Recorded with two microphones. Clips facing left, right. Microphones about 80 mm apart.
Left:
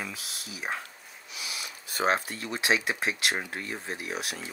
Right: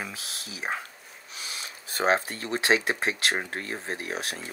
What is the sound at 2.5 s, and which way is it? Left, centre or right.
Speech, right.